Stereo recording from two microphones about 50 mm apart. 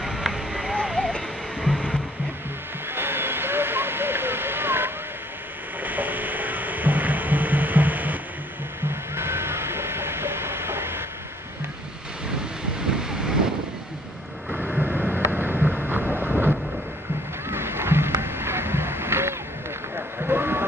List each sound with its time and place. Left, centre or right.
0.0 s a sound: centre
0.9 s music: centre
2.9 s vehicle: right
5.8 s music: right
8.8 s music: right
13.1 s vehicle: centre
14.8 s vehicle: right
17.5 s a sound: right
20.2 s vehicle: right